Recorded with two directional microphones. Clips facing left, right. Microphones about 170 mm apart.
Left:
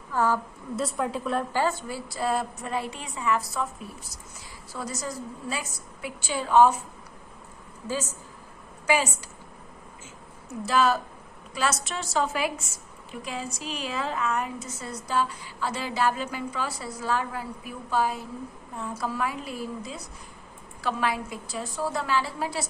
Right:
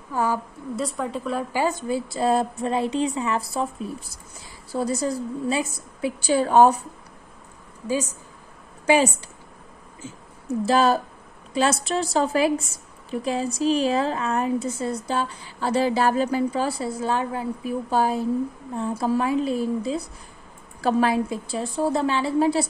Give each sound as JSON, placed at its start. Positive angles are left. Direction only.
{"t": 0.1, "sound": "a woman's voice", "side_deg": -15}
{"t": 0.7, "sound": "a woman's voice", "side_deg": 0}
{"t": 1.5, "sound": "a woman's voice", "side_deg": -15}
{"t": 5.0, "sound": "a woman's voice", "side_deg": -30}
{"t": 6.3, "sound": "a woman's voice", "side_deg": -45}
{"t": 7.8, "sound": "speech", "side_deg": -15}
{"t": 8.8, "sound": "a woman's voice", "side_deg": -30}
{"t": 10.6, "sound": "a woman's voice", "side_deg": -30}